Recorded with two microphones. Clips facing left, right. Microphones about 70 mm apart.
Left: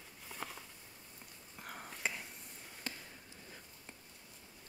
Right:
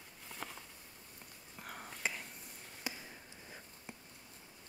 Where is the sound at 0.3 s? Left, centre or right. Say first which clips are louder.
Left 1 dB; centre.